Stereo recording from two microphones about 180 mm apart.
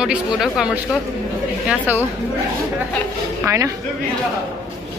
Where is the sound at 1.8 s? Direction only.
15° left (ahead or behind).